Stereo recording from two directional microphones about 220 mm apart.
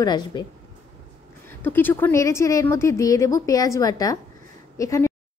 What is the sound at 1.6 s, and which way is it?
A woman's voice, 10° left (ahead or behind).